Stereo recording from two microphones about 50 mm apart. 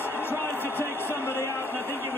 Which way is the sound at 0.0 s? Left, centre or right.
Left.